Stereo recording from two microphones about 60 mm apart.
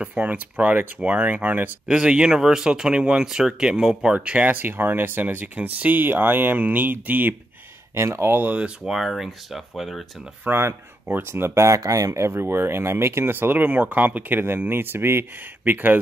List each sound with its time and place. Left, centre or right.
0.0 s speech: right
2.0 s speech: centre; by 7.3 s right
7.9 s speech: right
8.5 s speech: centre
8.9 s speech: centre
10.5 s speech: right
11.8 s speech: right
12.2 s speech: right
13.3 s speech: right